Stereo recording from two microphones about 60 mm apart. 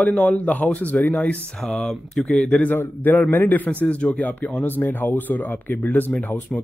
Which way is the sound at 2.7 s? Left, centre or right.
Left.